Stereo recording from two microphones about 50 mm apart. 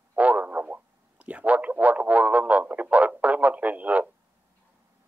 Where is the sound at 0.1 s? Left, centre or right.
Right.